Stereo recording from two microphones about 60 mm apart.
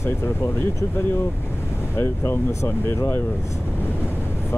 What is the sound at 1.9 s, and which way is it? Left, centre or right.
Speech, left.